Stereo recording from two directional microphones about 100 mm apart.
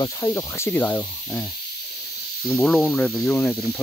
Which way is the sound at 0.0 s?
35° left (ahead or behind).